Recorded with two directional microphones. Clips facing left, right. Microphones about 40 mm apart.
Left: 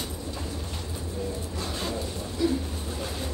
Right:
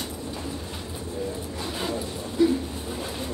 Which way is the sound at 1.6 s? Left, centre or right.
Centre.